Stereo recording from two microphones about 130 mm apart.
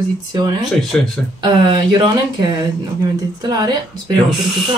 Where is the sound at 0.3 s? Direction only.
30° right (ahead or behind).